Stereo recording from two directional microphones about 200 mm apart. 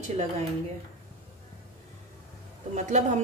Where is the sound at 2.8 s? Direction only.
35° right (ahead or behind).